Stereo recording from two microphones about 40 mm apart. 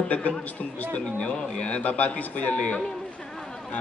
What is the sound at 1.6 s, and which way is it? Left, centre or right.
A man's voice, left.